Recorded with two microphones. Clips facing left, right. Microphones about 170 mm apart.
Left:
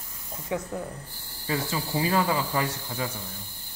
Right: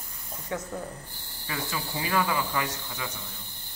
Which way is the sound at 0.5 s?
10° left (ahead or behind).